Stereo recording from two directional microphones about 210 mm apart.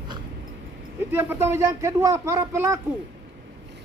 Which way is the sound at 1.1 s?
10° right (ahead or behind).